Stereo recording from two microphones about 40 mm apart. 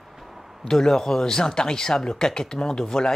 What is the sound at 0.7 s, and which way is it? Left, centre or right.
Speech, centre.